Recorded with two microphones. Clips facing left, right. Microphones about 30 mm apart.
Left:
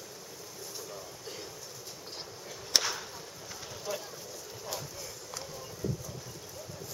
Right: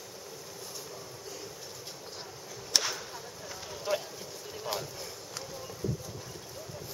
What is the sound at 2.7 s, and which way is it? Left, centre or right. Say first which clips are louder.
Whip: even; centre.